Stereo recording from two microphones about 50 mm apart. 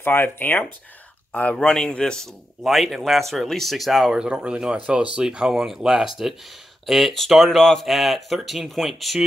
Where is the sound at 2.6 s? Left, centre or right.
Centre.